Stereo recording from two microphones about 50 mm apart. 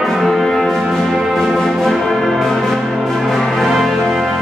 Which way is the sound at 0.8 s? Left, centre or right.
Centre.